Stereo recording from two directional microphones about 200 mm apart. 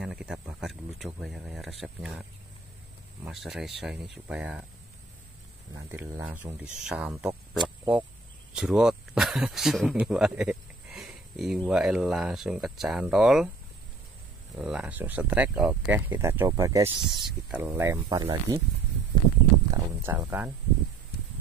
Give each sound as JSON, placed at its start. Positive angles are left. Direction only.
{"t": 0.0, "sound": "a sound", "side_deg": -5}
{"t": 3.3, "sound": "speech", "side_deg": 0}
{"t": 5.7, "sound": "speech", "side_deg": -15}
{"t": 7.6, "sound": "a sound", "side_deg": -5}
{"t": 8.5, "sound": "speech", "side_deg": -5}
{"t": 14.6, "sound": "speech", "side_deg": -5}
{"t": 17.0, "sound": "speech", "side_deg": 0}
{"t": 17.6, "sound": "speech", "side_deg": -15}
{"t": 19.7, "sound": "speech", "side_deg": -15}